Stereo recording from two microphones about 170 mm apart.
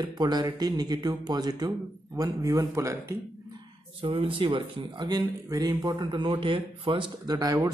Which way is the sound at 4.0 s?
30° right (ahead or behind).